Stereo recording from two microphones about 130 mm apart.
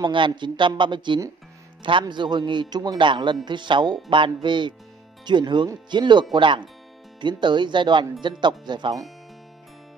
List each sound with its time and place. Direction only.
0.0 s speech: 40° right (ahead or behind)